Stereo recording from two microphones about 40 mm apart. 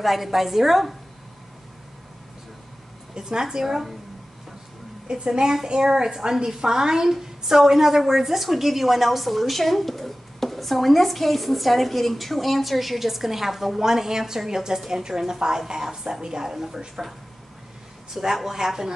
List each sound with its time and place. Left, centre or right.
0.0 s a woman's voice: centre
3.2 s a woman's voice: centre
5.0 s a woman's voice: right
18.1 s a woman's voice: centre